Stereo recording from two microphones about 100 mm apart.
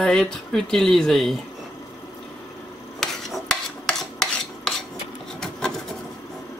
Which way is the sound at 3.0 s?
Centre (ahead or behind).